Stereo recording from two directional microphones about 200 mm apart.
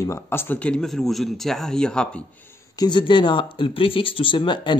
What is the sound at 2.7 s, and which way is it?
Speech, 20° left (ahead or behind).